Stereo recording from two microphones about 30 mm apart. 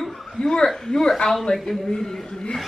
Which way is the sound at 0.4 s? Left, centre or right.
Left.